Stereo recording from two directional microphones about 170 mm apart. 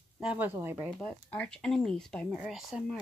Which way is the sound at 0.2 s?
10° right (ahead or behind).